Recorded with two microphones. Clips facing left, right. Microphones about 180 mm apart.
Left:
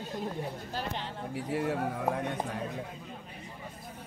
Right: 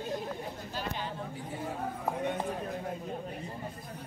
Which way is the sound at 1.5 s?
75° left (ahead or behind).